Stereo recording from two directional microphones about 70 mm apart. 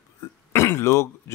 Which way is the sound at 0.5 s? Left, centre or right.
Left.